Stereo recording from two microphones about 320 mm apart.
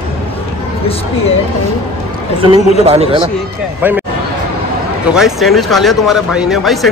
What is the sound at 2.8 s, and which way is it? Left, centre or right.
Speech, centre.